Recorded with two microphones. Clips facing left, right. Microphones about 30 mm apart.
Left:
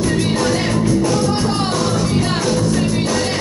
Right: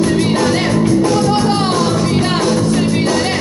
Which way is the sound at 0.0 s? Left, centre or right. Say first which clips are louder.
Right 4 dB; right.